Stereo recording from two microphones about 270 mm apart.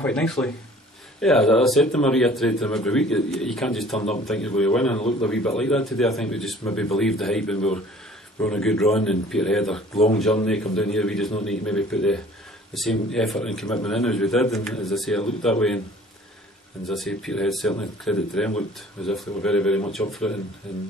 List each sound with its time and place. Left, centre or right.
0.0 s speech: centre
16.8 s speech: centre